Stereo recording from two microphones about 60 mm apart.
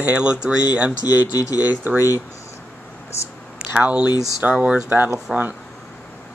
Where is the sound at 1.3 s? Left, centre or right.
Left.